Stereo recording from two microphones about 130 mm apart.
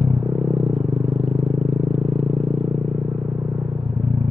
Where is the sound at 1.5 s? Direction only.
65° right (ahead or behind).